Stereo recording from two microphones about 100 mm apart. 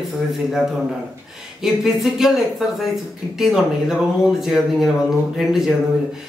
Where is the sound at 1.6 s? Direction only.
5° right (ahead or behind).